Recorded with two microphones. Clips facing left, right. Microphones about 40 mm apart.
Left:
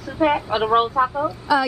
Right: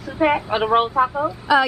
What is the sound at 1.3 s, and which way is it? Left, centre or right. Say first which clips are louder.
Speech: right 2 dB; right.